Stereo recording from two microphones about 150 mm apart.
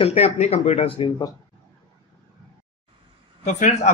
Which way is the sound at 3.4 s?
50° left (ahead or behind).